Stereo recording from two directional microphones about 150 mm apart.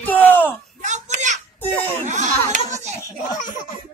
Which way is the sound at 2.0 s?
55° right (ahead or behind).